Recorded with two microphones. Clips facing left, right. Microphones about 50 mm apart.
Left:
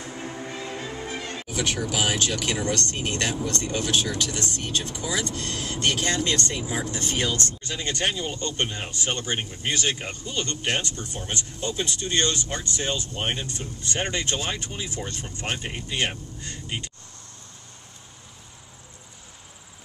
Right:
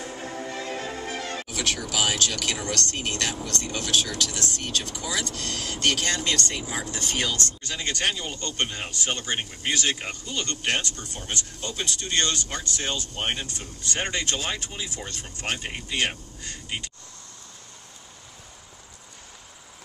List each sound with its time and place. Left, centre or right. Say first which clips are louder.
0.2 s music: even; right
1.5 s speech: left 4 dB; centre